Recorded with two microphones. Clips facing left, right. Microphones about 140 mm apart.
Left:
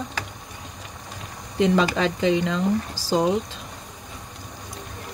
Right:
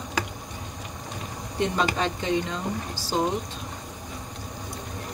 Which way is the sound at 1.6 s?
90° left.